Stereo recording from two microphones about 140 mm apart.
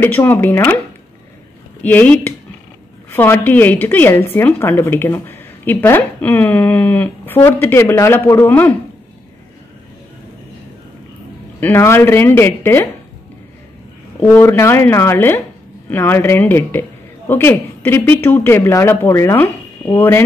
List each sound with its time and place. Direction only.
0.0 s a woman's voice: 15° left (ahead or behind)
1.8 s a woman's voice: 10° left (ahead or behind)
11.6 s a woman's voice: 20° left (ahead or behind)
14.2 s a woman's voice: 15° left (ahead or behind)